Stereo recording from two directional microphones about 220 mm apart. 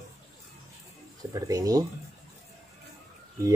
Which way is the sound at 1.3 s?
15° right (ahead or behind).